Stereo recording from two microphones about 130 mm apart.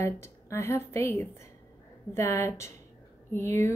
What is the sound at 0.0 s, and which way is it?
Speech, 20° left (ahead or behind).